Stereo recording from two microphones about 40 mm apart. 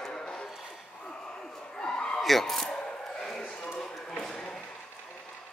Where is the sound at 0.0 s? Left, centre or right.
Centre.